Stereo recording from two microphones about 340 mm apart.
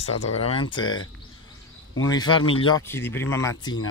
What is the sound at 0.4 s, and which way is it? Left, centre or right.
Speech, centre.